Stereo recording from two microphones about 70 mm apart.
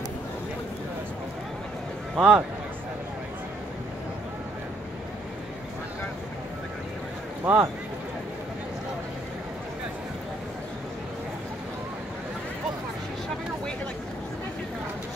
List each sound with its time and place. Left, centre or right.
2.1 s a man's voice: centre
7.4 s speech: right